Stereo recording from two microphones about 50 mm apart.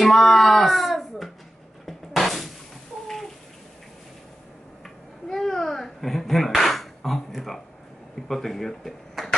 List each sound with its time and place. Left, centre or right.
0.0 s a sound: centre
1.9 s music: centre
4.8 s babbling: centre
8.3 s speech: centre